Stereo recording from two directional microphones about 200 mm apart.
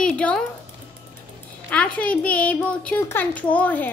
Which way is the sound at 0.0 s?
5° left (ahead or behind).